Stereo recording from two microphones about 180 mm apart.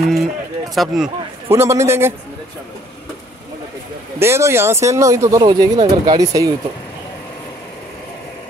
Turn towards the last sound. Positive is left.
turn(degrees=-20)  # may be behind; listen again after turning